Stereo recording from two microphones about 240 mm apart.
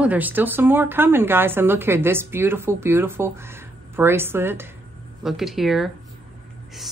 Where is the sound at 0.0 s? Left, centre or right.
Centre.